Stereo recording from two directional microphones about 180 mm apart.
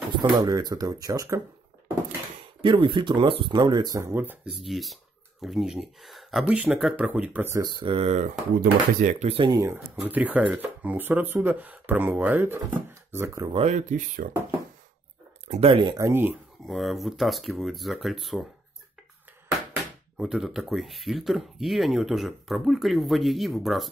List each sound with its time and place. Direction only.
0.2 s speech: 20° right (ahead or behind)
2.6 s speech: 25° right (ahead or behind)
8.5 s speech: 45° right (ahead or behind)
9.4 s speech: 15° right (ahead or behind)
13.5 s speech: 35° right (ahead or behind)
15.4 s speech: 35° right (ahead or behind); by 16.3 s 15° right (ahead or behind)
16.6 s speech: centre (ahead or behind)
19.7 s speech: centre (ahead or behind)